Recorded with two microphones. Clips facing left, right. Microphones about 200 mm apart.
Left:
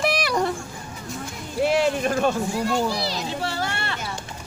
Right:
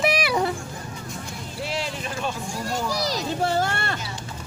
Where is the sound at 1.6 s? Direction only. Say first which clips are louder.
Left 10 dB; 55° left (ahead or behind).